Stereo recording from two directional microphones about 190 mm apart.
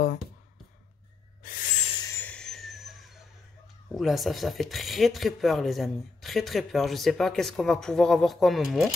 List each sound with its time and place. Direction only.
1.4 s owl: 45° left (ahead or behind)
2.0 s a sound: 15° left (ahead or behind)
3.9 s speech: centre (ahead or behind)